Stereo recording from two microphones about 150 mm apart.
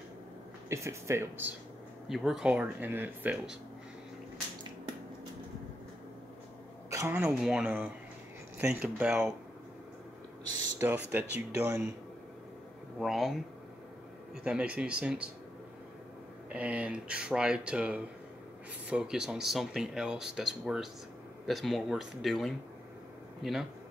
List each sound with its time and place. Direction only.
0.7 s speech: 20° right (ahead or behind)
2.0 s speech: centre (ahead or behind)
6.9 s speech: 20° right (ahead or behind)
7.3 s speech: 5° right (ahead or behind)
10.8 s speech: 15° right (ahead or behind)
13.0 s speech: centre (ahead or behind)
16.4 s speech: 10° right (ahead or behind)